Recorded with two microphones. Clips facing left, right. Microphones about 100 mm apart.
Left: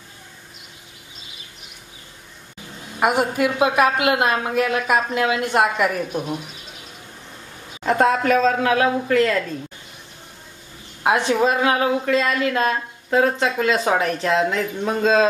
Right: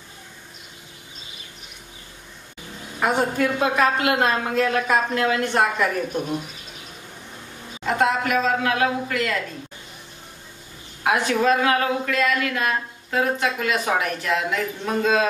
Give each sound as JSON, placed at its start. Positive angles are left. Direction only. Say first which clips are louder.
{"t": 3.0, "sound": "a woman's voice", "louder": "left 2 dB", "side_deg": 15}
{"t": 7.8, "sound": "speech", "louder": "left 3 dB", "side_deg": 35}
{"t": 11.1, "sound": "a woman's voice", "louder": "left 1 dB", "side_deg": 20}